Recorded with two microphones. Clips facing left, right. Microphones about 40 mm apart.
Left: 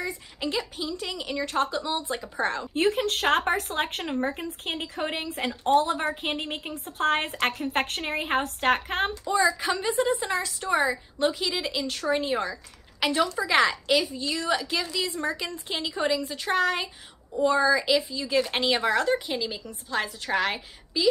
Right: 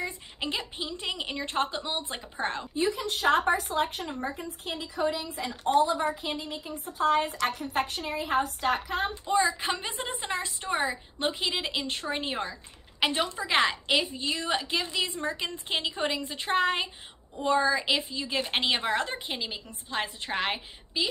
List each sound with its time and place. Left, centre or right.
0.0 s a woman's voice: right
2.7 s a woman's voice: left
9.2 s a woman's voice: right